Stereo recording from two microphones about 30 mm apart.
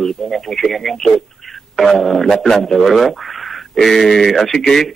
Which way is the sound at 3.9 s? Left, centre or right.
Centre.